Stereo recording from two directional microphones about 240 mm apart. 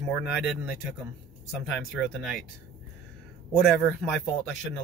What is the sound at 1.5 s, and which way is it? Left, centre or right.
Speech, centre.